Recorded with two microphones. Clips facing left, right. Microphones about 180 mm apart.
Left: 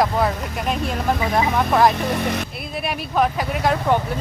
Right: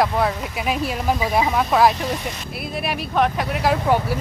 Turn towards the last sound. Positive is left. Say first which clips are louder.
# even
turn(degrees=-5)  # may be behind; listen again after turning